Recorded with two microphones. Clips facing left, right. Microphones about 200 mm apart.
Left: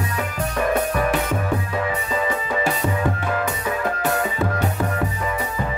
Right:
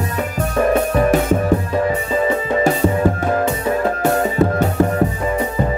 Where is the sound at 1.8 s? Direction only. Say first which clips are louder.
Right 6 dB; 40° right (ahead or behind).